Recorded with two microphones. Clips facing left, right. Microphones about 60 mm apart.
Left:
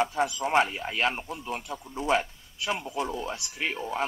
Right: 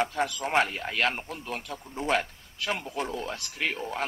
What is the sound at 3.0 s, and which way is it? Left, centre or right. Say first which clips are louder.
Speech: left 1 dB; centre.